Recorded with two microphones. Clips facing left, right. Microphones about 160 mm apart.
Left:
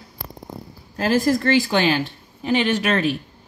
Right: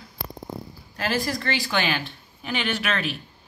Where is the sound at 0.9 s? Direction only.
40° left (ahead or behind).